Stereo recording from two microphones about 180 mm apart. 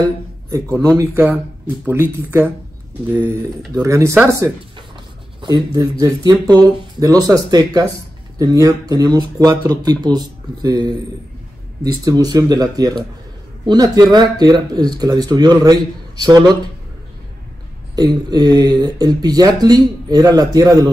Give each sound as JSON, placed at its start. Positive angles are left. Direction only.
{"t": 0.9, "sound": "speech", "side_deg": -15}
{"t": 3.8, "sound": "speech", "side_deg": -15}
{"t": 17.9, "sound": "speech", "side_deg": -20}